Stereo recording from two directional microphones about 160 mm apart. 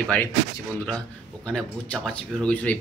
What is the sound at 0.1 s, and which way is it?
Speech, 10° left (ahead or behind).